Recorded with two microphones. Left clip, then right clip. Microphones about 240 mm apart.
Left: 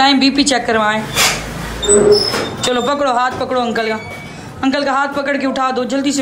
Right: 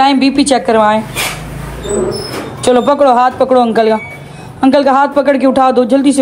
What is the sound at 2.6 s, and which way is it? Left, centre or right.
A man's voice, centre.